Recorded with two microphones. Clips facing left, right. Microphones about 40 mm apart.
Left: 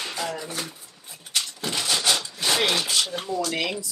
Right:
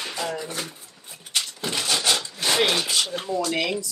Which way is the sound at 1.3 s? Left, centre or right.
Centre.